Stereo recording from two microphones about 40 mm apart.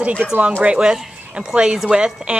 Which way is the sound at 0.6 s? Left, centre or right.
Right.